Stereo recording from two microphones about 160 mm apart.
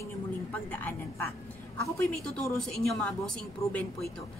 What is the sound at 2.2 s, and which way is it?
A woman's voice, 5° left (ahead or behind).